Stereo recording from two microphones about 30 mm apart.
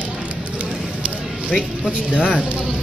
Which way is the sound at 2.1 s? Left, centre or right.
Left.